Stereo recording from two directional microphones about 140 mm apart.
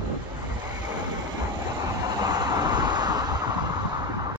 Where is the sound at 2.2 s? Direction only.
25° right (ahead or behind).